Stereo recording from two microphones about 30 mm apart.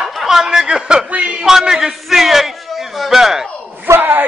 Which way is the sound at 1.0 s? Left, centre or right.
Right.